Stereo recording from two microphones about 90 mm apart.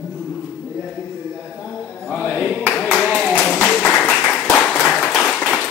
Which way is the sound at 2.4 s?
20° left (ahead or behind).